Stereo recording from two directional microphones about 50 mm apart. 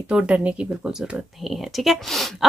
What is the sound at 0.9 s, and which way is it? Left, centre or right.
Speech, centre.